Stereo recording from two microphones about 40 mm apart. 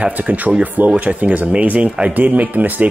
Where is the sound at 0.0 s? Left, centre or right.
Right.